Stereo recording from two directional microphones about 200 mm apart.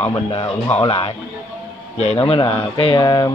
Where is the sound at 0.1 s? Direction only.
25° left (ahead or behind).